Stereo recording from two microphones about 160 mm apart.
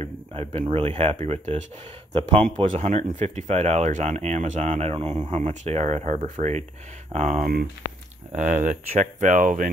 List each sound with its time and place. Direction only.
0.0 s speech: 40° right (ahead or behind); by 9.7 s 55° right (ahead or behind)